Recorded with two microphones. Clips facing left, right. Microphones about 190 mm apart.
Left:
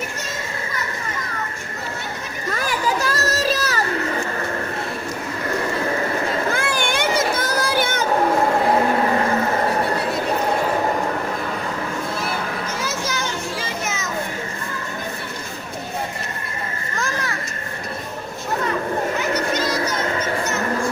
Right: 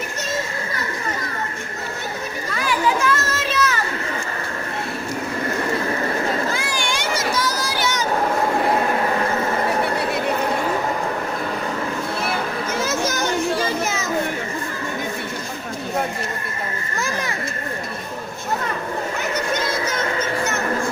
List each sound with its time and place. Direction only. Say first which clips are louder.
2.5 s children playing: right 2 dB; 40° left (ahead or behind)
6.5 s children playing: left 3 dB; 55° left (ahead or behind)
12.8 s children playing: right 6 dB; 50° right (ahead or behind)